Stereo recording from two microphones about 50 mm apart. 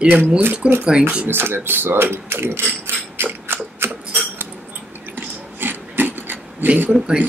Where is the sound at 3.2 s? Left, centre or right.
Right.